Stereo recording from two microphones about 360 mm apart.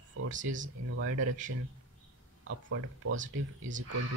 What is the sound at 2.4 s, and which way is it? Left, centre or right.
Speech, right.